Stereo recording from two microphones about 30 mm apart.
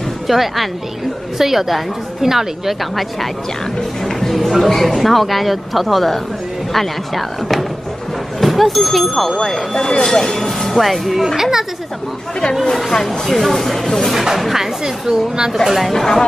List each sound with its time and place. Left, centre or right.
0.3 s speech: centre
4.0 s speech: centre
8.4 s a sound: centre
8.8 s speech: centre
9.8 s speech: left
10.8 s speech: centre
13.3 s speech: centre
14.1 s speech: centre
15.9 s speech: centre